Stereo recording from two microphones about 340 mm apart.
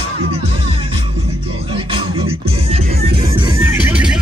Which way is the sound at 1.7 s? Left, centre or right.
Centre.